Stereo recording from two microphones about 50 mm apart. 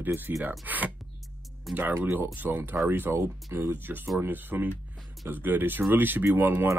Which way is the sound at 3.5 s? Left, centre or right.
Right.